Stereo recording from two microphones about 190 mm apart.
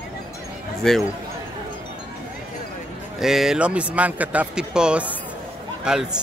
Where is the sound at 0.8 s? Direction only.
5° left (ahead or behind).